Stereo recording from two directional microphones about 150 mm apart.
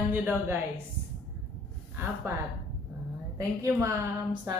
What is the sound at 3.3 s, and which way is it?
Speech, 20° right (ahead or behind).